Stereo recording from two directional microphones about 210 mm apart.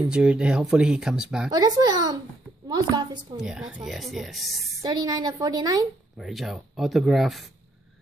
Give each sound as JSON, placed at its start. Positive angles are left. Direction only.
{"t": 0.0, "sound": "speech", "side_deg": -5}
{"t": 1.5, "sound": "a woman's voice", "side_deg": -20}
{"t": 3.3, "sound": "speech", "side_deg": -5}
{"t": 4.8, "sound": "a woman's voice", "side_deg": -20}
{"t": 6.1, "sound": "speech", "side_deg": 0}